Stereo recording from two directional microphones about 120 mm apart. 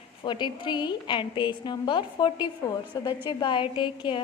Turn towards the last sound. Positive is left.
turn(degrees=45)  # may be behind; listen again after turning